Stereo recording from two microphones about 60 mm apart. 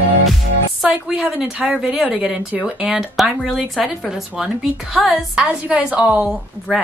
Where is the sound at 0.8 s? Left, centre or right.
Centre.